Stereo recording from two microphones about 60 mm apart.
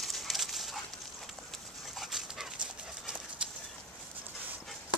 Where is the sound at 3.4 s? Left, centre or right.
Centre.